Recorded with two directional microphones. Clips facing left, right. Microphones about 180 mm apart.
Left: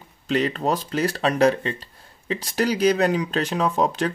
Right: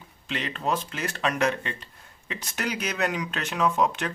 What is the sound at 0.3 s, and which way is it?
Speech, 40° left (ahead or behind).